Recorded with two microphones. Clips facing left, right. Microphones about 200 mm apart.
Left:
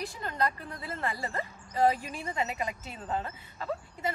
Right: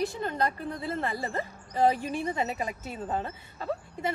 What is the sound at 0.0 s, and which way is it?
A woman's voice, 25° right (ahead or behind).